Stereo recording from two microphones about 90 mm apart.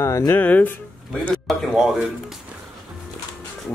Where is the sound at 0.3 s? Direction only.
15° left (ahead or behind).